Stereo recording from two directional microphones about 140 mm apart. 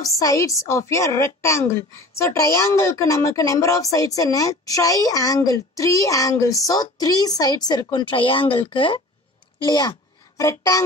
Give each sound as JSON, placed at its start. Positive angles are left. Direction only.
{"t": 0.0, "sound": "a woman's voice", "side_deg": 25}